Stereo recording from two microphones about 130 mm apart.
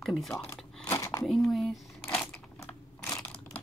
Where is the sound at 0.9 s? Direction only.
25° left (ahead or behind).